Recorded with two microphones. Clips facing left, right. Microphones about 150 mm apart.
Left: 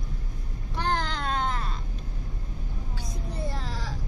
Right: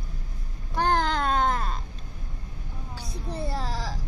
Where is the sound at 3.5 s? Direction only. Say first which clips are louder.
Right 4 dB; 35° right (ahead or behind).